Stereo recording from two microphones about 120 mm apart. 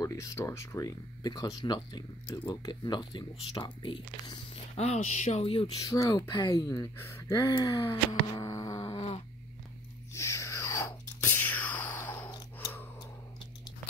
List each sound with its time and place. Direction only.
0.0 s speech: 25° left (ahead or behind)
4.7 s speech: 65° left (ahead or behind); by 5.7 s 50° left (ahead or behind)
5.9 s speech: 30° left (ahead or behind)
7.5 s a sound: 35° left (ahead or behind)
8.9 s a sound: 55° left (ahead or behind)
10.1 s chewing: 25° left (ahead or behind)